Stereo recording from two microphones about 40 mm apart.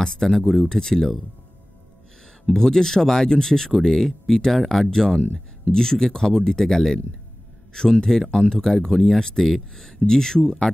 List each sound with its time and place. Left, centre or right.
0.0 s speech: centre
2.4 s speech: centre